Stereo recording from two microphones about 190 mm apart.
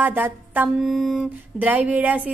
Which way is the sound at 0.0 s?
10° right (ahead or behind).